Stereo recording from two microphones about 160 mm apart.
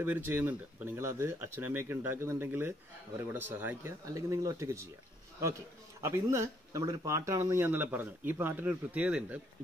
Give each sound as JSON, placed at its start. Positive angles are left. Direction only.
{"t": 0.0, "sound": "speech", "side_deg": -15}
{"t": 6.0, "sound": "speech", "side_deg": -15}